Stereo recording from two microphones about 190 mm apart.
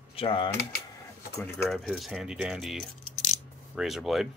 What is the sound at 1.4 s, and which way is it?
Speech, 5° left (ahead or behind).